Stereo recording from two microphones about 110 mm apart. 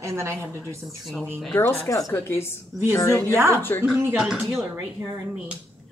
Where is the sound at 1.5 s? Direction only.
25° left (ahead or behind).